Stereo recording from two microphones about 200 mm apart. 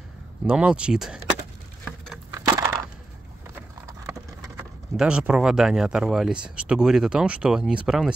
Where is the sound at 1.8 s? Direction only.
Centre (ahead or behind).